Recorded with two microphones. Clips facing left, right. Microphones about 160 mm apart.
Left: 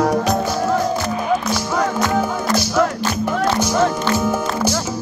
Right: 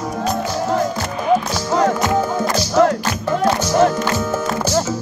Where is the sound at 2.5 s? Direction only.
10° right (ahead or behind).